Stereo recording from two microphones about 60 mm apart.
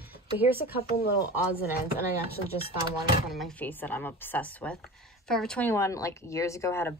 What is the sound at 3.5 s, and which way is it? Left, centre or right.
Speech, left.